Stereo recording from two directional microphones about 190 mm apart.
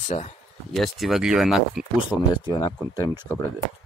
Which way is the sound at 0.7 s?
Centre (ahead or behind).